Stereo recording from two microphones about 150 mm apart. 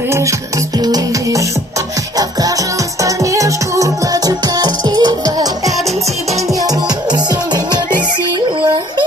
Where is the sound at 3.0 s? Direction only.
20° right (ahead or behind).